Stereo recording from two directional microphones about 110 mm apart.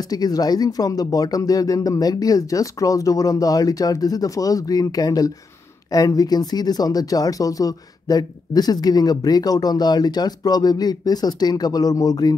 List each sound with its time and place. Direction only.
0.0 s speech: 35° left (ahead or behind)